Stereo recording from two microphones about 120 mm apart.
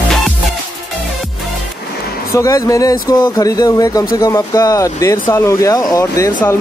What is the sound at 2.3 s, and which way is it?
Speech, 25° left (ahead or behind).